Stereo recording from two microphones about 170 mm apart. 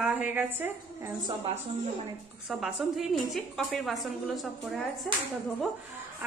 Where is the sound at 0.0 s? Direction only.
10° right (ahead or behind).